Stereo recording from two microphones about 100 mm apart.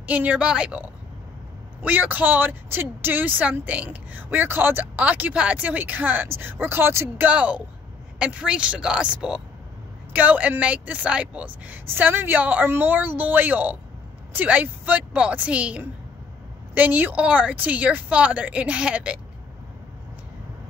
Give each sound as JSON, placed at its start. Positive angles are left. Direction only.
{"t": 0.0, "sound": "speech", "side_deg": -15}
{"t": 7.2, "sound": "a woman's voice", "side_deg": -15}